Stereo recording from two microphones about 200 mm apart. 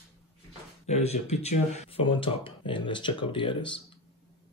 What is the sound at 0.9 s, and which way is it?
Speech, 35° left (ahead or behind).